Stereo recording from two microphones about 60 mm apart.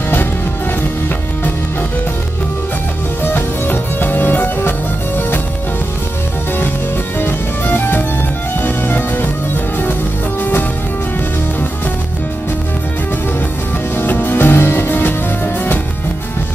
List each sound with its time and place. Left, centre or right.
3.2 s music: left
7.2 s music: left
13.9 s music: left